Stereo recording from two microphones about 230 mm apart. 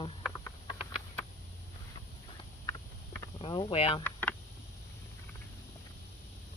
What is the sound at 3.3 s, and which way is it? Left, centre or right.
Speech, left.